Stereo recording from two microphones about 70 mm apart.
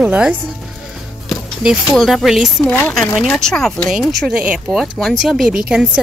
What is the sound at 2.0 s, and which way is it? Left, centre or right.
Speech, centre.